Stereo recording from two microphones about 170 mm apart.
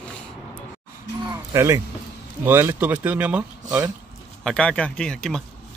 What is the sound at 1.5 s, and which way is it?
Speech, 15° right (ahead or behind).